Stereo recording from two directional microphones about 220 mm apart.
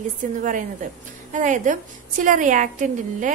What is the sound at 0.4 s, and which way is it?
A woman's voice, 35° right (ahead or behind).